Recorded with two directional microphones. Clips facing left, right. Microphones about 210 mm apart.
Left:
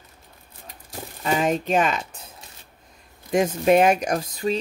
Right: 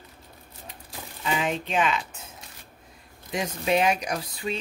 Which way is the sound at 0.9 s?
45° left (ahead or behind).